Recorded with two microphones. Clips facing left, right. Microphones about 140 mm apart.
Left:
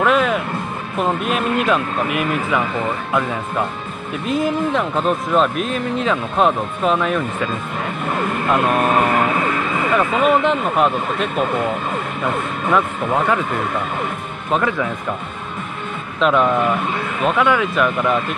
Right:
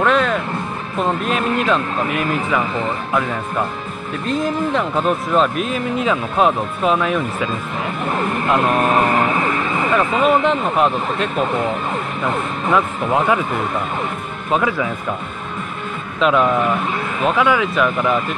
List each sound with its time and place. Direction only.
0.0 s music: 5° left (ahead or behind)
0.9 s speech: 5° left (ahead or behind)
8.5 s speech: 5° left (ahead or behind)
8.9 s vehicle: 30° right (ahead or behind)
10.2 s speech: centre (ahead or behind)
14.5 s speech: 5° right (ahead or behind)
16.2 s speech: centre (ahead or behind)